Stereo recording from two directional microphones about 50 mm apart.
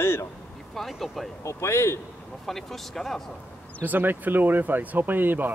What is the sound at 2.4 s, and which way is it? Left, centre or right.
Speech, centre.